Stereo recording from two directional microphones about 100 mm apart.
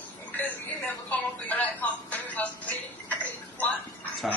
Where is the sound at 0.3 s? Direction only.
20° left (ahead or behind).